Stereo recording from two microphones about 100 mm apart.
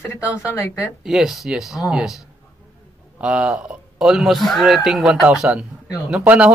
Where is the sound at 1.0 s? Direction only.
5° right (ahead or behind).